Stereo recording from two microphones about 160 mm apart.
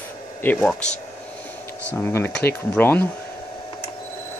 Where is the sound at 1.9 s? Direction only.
15° left (ahead or behind).